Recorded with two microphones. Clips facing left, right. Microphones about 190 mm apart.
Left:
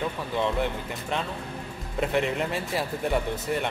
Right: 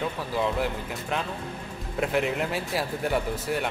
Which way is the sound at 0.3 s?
Centre (ahead or behind).